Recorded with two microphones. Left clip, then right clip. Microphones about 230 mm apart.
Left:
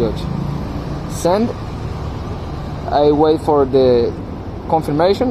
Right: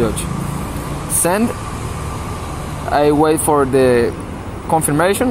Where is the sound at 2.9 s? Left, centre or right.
Right.